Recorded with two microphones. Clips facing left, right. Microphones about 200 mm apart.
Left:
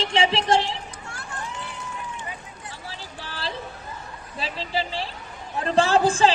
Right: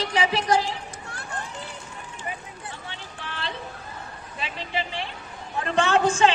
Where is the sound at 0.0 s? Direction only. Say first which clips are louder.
Left 2 dB; 25° left (ahead or behind).